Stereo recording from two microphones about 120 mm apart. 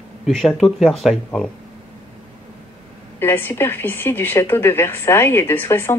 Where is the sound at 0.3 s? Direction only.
Centre (ahead or behind).